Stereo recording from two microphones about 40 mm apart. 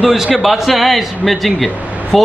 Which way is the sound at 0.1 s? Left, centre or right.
Centre.